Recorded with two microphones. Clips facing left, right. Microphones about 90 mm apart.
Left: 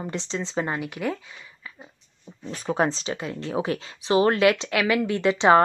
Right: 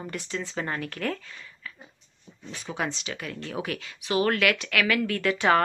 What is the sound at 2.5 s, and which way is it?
Speech, 40° left (ahead or behind).